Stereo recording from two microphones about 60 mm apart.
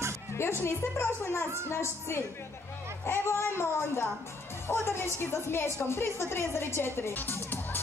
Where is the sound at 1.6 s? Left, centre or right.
Left.